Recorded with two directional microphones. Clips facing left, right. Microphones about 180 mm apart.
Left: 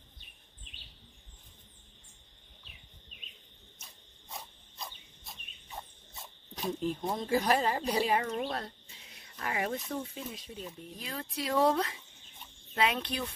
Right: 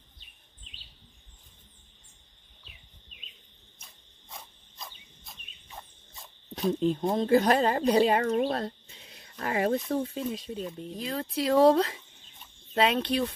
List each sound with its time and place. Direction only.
4.3 s cricket: centre (ahead or behind)
6.8 s speech: 25° right (ahead or behind)
7.2 s speech: 55° right (ahead or behind)
8.5 s speech: 35° right (ahead or behind)